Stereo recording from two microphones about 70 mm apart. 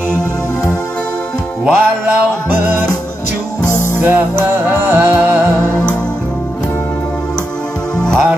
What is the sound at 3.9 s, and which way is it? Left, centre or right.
Music, right.